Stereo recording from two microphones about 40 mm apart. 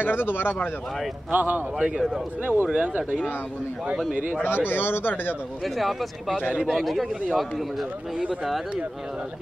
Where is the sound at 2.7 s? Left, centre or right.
Right.